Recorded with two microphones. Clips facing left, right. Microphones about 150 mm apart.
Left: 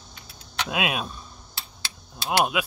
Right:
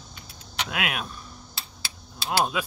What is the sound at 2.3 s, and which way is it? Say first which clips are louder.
Speech: left 2 dB; 10° left (ahead or behind).